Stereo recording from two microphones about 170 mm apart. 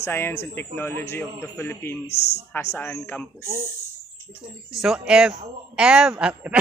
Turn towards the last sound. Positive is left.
turn(degrees=-5)  # may be behind; listen again after turning